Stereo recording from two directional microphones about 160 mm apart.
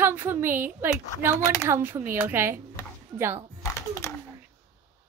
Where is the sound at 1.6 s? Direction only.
15° right (ahead or behind).